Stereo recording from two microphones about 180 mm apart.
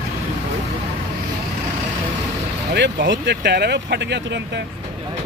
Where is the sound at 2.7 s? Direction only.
75° right (ahead or behind).